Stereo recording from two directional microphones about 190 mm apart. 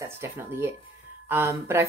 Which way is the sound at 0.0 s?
15° right (ahead or behind).